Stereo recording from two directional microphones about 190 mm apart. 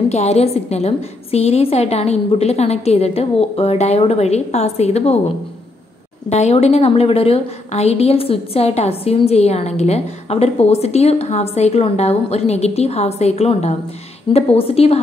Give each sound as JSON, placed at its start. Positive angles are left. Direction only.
{"t": 0.1, "sound": "a woman's voice", "side_deg": 35}
{"t": 6.2, "sound": "a woman's voice", "side_deg": 35}